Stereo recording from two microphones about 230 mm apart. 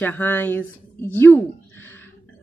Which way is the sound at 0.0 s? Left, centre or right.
Centre.